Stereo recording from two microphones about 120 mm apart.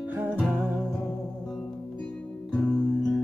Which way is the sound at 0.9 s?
5° left (ahead or behind).